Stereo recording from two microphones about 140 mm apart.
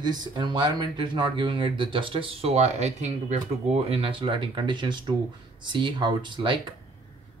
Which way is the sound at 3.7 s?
45° right (ahead or behind).